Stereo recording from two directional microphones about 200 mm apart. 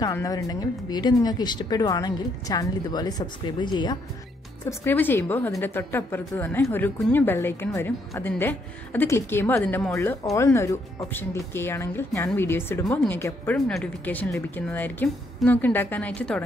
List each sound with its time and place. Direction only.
0.0 s speech: 15° left (ahead or behind)
4.6 s a woman's voice: 10° left (ahead or behind)